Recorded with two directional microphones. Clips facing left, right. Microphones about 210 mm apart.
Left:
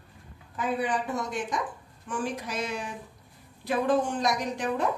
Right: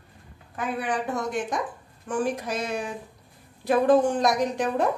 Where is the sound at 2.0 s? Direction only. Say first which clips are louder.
Right 5 dB; 50° right (ahead or behind).